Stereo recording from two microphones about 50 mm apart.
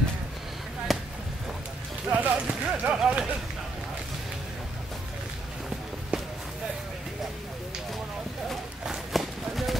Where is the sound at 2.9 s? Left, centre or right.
Right.